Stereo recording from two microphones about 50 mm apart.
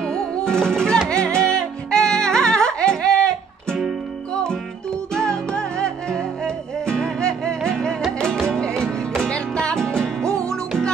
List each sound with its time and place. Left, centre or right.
0.0 s flamenco: centre
1.0 s music: centre